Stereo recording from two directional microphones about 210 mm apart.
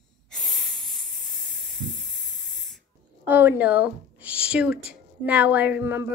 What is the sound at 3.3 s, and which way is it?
A woman's voice, 10° right (ahead or behind).